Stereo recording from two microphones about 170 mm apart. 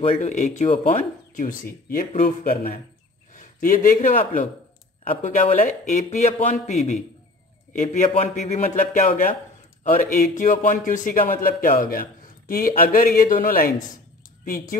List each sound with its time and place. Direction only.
0.0 s a man's voice: 40° left (ahead or behind); by 2.8 s 60° left (ahead or behind)
3.3 s a man's voice: 50° left (ahead or behind)